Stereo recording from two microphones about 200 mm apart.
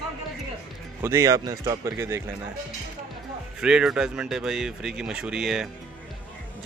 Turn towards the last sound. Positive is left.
turn(degrees=0)  # may be behind; listen again after turning